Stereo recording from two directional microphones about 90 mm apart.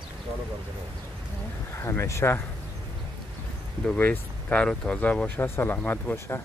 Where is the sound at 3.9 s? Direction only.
20° left (ahead or behind).